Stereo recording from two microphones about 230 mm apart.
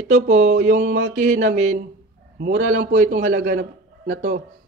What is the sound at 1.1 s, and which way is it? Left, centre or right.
Speech, right.